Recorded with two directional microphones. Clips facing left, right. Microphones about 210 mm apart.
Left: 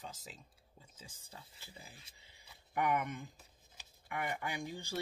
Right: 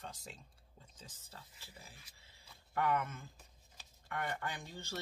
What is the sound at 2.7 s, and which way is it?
Speech, 15° left (ahead or behind).